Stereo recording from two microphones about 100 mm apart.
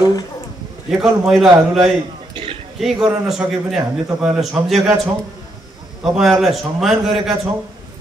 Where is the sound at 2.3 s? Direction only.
65° right (ahead or behind).